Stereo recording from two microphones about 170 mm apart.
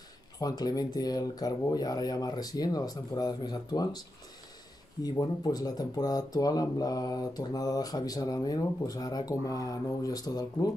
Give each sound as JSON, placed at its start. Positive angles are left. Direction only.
{"t": 0.4, "sound": "speech", "side_deg": 25}
{"t": 5.0, "sound": "speech", "side_deg": 20}